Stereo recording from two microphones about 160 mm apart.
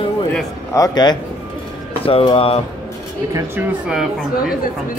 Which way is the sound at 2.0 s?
35° left (ahead or behind).